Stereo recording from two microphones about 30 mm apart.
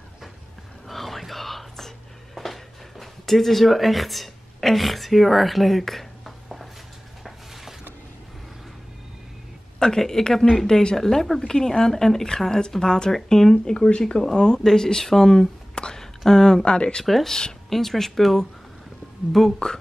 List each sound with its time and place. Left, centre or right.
0.8 s whispering: centre
2.3 s a sound: centre
9.8 s speech: centre
10.7 s speech: left
11.0 s speech: centre
13.7 s speech: left
14.6 s speech: centre
15.7 s a sound: left
16.3 s speech: centre
16.6 s speech: left
17.0 s speech: centre
17.3 s speech: left
17.6 s speech: centre
19.4 s speech: centre